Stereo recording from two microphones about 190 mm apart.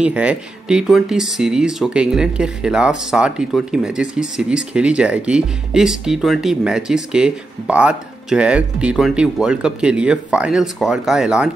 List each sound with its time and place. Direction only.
0.0 s speech: 5° right (ahead or behind)